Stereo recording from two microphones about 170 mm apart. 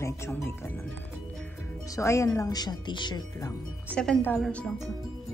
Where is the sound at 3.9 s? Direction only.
5° left (ahead or behind).